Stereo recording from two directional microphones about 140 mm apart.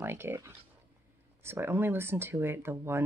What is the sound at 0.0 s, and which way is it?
Speech, 15° right (ahead or behind).